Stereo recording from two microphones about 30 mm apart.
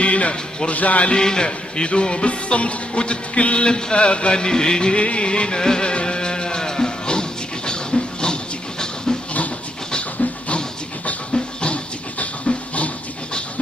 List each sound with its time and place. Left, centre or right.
0.0 s music: left
0.7 s speech: left
1.1 s music: left
4.4 s music: left
4.9 s music: left
11.3 s a sound: left
12.4 s dog: left